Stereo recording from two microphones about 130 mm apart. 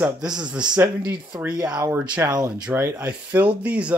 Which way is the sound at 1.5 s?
30° right (ahead or behind).